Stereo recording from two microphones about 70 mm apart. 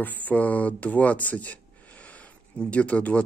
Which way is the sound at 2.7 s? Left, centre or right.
Centre.